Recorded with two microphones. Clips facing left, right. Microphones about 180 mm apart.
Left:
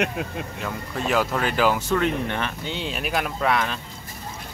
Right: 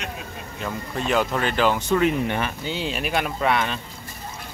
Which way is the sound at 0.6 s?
Centre (ahead or behind).